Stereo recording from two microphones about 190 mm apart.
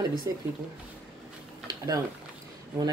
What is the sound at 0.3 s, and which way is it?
Speech, 15° right (ahead or behind).